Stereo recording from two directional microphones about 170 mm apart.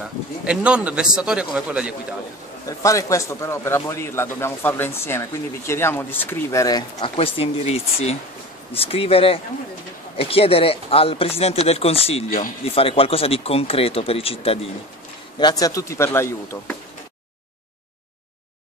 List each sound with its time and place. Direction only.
0.5 s a man's voice: 5° right (ahead or behind)
2.8 s speech: 20° left (ahead or behind)
7.2 s speech: 35° left (ahead or behind)
15.3 s speech: 25° left (ahead or behind)